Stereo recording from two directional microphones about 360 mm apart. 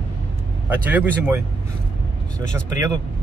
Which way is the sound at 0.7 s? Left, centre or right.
Centre.